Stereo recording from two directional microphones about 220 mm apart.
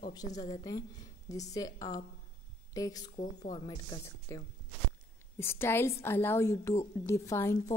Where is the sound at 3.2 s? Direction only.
30° left (ahead or behind).